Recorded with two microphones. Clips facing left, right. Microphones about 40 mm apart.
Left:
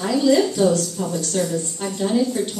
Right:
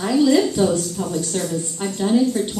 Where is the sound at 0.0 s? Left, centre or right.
Centre.